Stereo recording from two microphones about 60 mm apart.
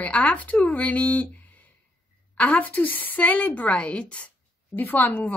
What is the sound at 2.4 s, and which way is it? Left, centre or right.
Speech, left.